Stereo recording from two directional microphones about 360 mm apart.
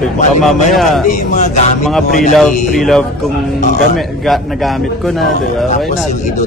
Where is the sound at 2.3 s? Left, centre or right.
Centre.